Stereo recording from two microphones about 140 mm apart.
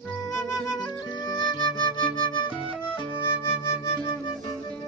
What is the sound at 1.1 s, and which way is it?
Music, 30° left (ahead or behind).